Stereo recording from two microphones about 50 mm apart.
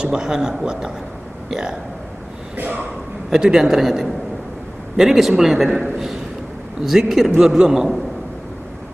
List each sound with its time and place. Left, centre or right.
0.0 s a man's voice: centre
2.5 s speech: right
3.3 s a man's voice: centre
6.8 s a man's voice: centre